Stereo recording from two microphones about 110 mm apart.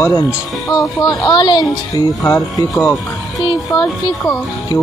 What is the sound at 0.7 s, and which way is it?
Speech, 35° left (ahead or behind).